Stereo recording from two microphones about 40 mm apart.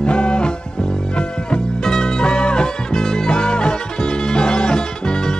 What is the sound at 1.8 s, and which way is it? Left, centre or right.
Music, centre.